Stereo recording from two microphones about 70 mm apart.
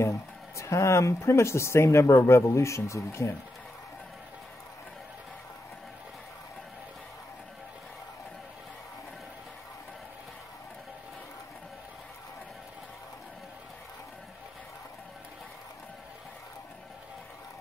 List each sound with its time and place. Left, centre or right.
0.0 s speech: left